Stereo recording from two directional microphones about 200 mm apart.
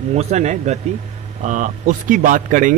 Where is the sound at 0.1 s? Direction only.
35° right (ahead or behind).